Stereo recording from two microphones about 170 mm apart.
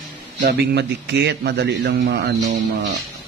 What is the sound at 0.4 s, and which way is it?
A man's voice, 80° right.